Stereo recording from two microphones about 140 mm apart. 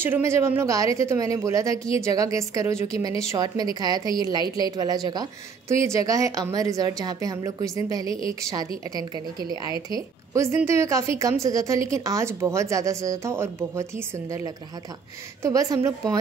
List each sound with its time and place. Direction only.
0.0 s a woman's voice: 15° right (ahead or behind)